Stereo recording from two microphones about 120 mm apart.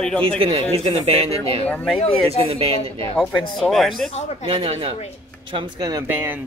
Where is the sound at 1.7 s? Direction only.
10° left (ahead or behind).